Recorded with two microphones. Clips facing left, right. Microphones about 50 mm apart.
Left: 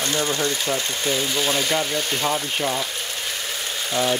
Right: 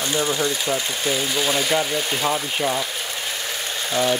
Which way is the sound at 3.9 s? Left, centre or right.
Centre.